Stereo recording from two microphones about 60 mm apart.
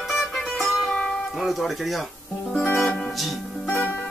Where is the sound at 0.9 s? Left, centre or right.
Centre.